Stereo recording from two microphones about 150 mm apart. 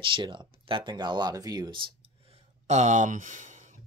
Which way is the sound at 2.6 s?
50° right (ahead or behind).